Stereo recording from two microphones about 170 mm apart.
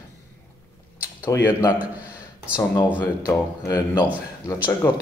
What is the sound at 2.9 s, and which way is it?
Speech, 15° left (ahead or behind).